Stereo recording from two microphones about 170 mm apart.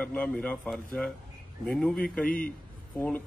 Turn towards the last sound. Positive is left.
turn(degrees=10)  # may be behind; listen again after turning